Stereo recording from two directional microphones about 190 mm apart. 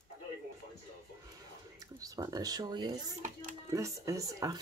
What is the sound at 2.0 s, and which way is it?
Speech, 20° right (ahead or behind).